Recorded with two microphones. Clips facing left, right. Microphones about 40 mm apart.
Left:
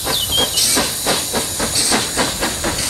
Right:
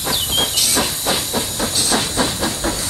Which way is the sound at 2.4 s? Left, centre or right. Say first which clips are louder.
Left 1 dB; left.